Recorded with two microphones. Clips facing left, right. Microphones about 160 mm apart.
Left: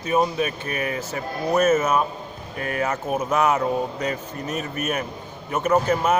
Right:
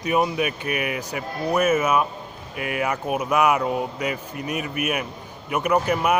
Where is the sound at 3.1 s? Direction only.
15° right (ahead or behind).